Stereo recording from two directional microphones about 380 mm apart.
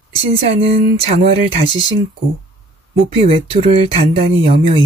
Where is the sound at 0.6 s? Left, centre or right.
Centre.